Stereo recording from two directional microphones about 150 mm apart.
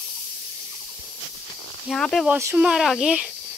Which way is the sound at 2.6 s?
Centre (ahead or behind).